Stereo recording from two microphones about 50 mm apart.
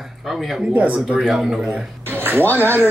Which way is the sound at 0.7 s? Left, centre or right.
Right.